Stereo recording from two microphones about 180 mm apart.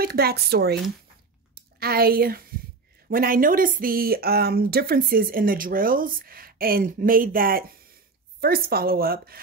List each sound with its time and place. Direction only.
0.0 s a woman's voice: 60° right (ahead or behind)
1.8 s a woman's voice: 55° right (ahead or behind)